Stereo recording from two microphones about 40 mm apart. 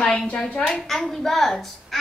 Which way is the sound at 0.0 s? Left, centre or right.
Left.